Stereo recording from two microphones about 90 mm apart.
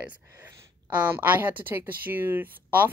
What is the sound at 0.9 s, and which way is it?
Speech, 20° right (ahead or behind).